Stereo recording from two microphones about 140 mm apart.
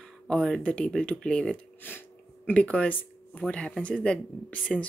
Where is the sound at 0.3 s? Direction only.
5° left (ahead or behind).